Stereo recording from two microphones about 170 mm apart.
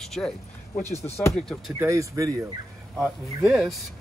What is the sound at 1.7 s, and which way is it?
Speech, 20° right (ahead or behind).